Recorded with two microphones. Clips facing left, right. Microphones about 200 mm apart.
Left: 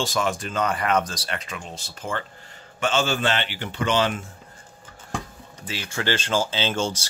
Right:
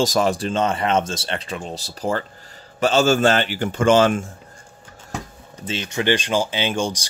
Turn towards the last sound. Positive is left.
turn(degrees=-15)  # may be behind; listen again after turning